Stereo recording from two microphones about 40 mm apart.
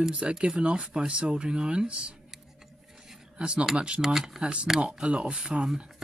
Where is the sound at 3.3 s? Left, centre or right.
Right.